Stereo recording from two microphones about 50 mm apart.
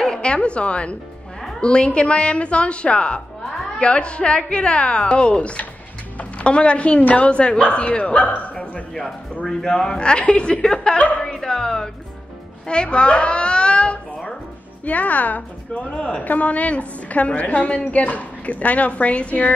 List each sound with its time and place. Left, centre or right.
0.0 s a woman's voice: centre
9.5 s a woman's voice: centre
11.4 s a woman's voice: centre